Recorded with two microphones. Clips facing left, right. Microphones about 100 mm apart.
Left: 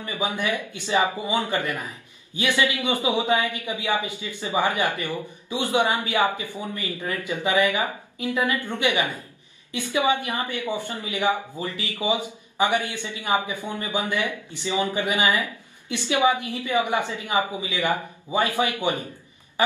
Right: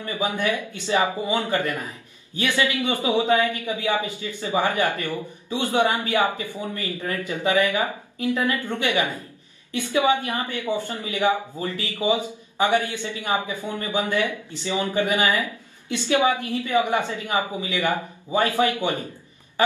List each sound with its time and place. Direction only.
0.4 s a man's voice: 15° left (ahead or behind)